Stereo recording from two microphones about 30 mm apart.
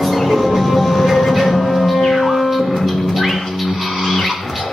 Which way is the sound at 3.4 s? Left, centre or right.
Centre.